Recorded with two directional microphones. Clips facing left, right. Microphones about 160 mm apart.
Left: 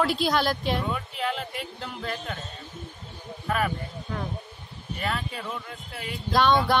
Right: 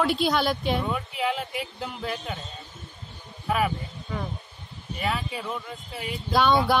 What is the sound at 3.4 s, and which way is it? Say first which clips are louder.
Speech: right 2 dB; 5° right (ahead or behind).